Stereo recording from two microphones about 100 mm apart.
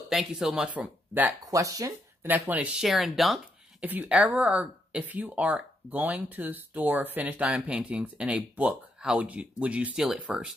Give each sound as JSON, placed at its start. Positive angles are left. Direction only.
{"t": 0.1, "sound": "speech", "side_deg": -5}
{"t": 1.4, "sound": "speech", "side_deg": -35}
{"t": 2.2, "sound": "speech", "side_deg": -15}
{"t": 2.8, "sound": "speech", "side_deg": 0}
{"t": 3.8, "sound": "speech", "side_deg": -15}